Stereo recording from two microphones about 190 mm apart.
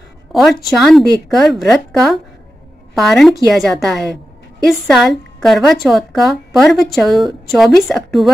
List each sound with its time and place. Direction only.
0.3 s a woman's voice: centre (ahead or behind)